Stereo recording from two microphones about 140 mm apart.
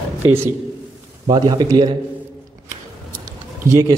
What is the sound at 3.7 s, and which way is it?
Speech, 25° right (ahead or behind).